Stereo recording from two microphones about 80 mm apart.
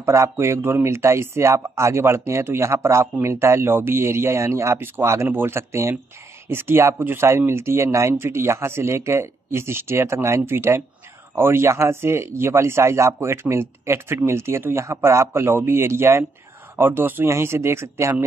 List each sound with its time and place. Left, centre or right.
0.0 s speech: right